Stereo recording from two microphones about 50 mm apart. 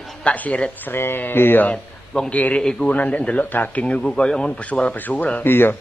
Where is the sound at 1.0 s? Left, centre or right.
Left.